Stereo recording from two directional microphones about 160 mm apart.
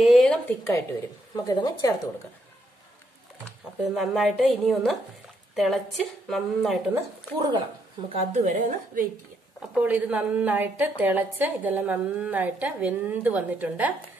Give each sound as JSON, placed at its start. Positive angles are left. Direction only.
{"t": 0.0, "sound": "a sound", "side_deg": 0}
{"t": 1.3, "sound": "a woman's voice", "side_deg": 25}
{"t": 3.9, "sound": "a woman's voice", "side_deg": 0}
{"t": 6.9, "sound": "a woman's voice", "side_deg": -25}
{"t": 8.5, "sound": "a woman's voice", "side_deg": -55}
{"t": 9.6, "sound": "a woman's voice", "side_deg": -10}